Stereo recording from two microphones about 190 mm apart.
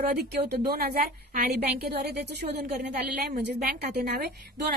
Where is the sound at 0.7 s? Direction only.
55° right (ahead or behind).